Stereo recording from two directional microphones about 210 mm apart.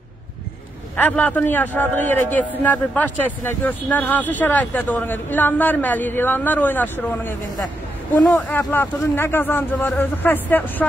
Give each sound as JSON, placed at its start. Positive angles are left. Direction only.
{"t": 0.9, "sound": "speech", "side_deg": 10}